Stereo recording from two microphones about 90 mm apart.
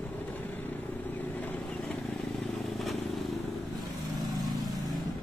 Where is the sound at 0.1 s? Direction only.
20° left (ahead or behind).